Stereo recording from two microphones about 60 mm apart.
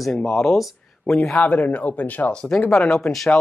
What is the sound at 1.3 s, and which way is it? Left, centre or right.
Speech, left.